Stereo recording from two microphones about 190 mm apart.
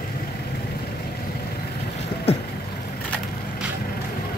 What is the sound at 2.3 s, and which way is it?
Vehicle, 30° left (ahead or behind).